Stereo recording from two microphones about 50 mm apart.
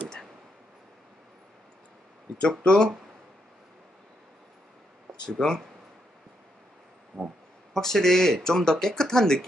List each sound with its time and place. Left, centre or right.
2.6 s speech: centre
5.2 s speech: centre
7.2 s speech: centre